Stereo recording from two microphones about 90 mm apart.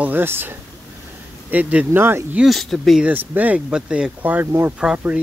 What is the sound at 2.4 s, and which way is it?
Speech, centre (ahead or behind).